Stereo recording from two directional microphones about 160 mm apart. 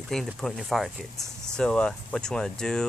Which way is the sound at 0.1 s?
Centre (ahead or behind).